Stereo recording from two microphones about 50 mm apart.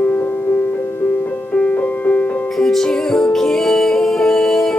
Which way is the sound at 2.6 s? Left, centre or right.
Centre.